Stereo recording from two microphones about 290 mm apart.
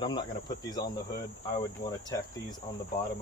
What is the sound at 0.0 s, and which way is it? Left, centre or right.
Speech, centre.